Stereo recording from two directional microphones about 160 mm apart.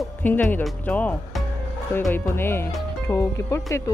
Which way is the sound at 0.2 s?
10° left (ahead or behind).